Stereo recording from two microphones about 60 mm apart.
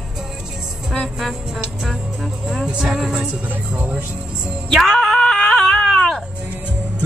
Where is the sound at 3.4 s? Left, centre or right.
Right.